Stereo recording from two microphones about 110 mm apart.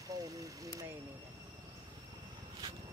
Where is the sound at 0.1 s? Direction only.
35° right (ahead or behind).